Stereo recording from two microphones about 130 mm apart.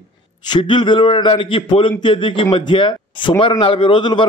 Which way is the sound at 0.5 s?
40° left (ahead or behind).